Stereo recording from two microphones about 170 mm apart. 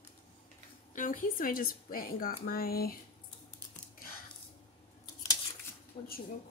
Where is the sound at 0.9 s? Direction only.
50° left (ahead or behind).